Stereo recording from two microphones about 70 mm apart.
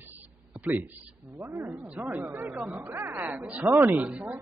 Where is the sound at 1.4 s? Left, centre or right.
Right; by 2.8 s centre.